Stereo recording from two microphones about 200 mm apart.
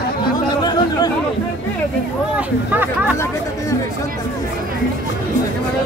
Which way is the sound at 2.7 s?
10° right (ahead or behind).